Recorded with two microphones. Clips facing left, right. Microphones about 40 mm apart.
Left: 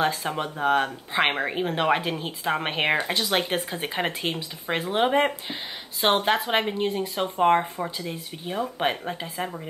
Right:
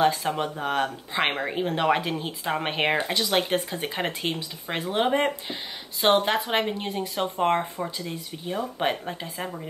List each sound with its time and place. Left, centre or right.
0.0 s speech: centre